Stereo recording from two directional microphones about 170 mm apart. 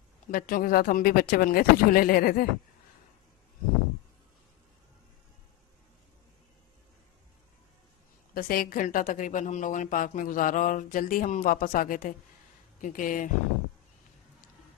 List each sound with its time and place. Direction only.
0.3 s speech: 55° left (ahead or behind)
8.4 s speech: 60° left (ahead or behind)